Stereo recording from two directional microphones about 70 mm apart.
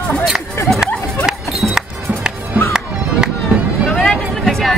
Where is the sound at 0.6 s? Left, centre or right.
Left.